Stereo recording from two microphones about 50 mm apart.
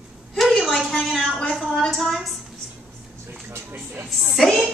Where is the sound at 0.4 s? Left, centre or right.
Centre.